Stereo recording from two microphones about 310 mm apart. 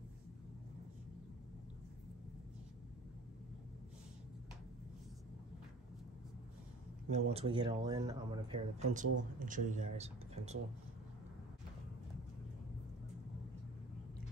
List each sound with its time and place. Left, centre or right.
7.1 s speech: right